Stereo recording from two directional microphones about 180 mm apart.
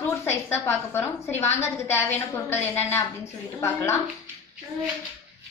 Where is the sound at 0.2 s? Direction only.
15° left (ahead or behind).